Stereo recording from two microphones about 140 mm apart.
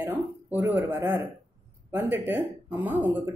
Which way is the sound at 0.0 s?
15° right (ahead or behind).